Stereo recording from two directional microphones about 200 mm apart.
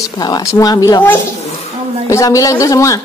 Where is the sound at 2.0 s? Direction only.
15° left (ahead or behind).